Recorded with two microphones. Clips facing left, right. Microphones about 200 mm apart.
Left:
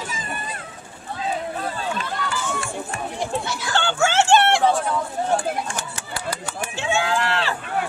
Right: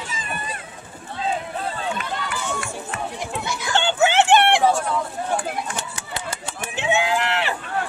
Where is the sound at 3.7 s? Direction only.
20° right (ahead or behind).